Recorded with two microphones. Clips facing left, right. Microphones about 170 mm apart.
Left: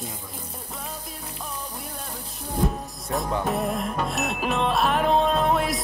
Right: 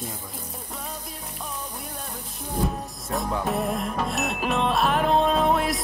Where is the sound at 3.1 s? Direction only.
Centre (ahead or behind).